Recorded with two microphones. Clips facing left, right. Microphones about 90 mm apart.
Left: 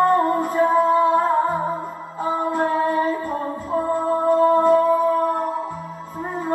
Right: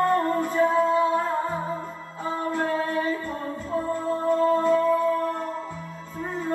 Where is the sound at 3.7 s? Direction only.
45° left (ahead or behind).